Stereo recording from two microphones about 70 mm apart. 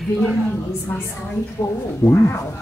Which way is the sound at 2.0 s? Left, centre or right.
Left.